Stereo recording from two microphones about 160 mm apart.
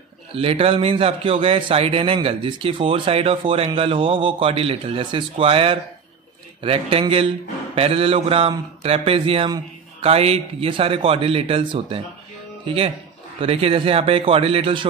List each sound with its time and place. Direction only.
0.3 s a man's voice: 35° right (ahead or behind)